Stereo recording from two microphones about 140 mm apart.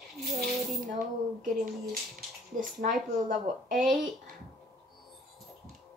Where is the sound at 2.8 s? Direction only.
70° right (ahead or behind).